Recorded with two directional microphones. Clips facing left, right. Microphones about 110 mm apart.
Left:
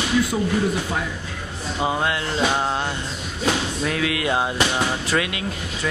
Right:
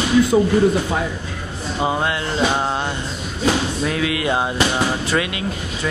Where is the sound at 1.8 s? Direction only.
30° right (ahead or behind).